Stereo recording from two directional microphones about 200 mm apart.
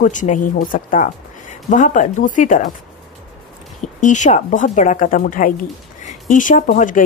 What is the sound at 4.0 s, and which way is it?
Speech, 40° left (ahead or behind).